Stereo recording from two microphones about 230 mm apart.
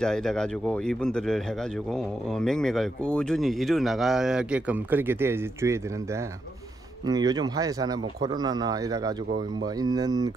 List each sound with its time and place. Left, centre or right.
0.0 s speech: centre
7.1 s speech: centre